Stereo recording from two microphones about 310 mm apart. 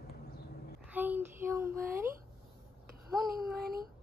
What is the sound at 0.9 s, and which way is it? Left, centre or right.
Speech, centre.